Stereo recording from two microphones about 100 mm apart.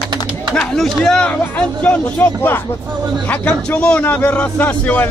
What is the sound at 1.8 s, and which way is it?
A man's voice, 20° left (ahead or behind).